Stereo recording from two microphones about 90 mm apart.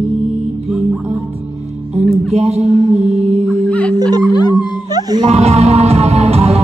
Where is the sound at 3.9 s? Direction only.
50° right (ahead or behind).